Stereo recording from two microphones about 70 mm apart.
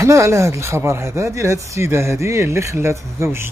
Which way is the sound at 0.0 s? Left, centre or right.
Right.